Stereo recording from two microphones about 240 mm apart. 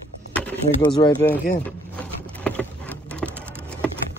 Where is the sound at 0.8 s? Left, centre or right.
Centre.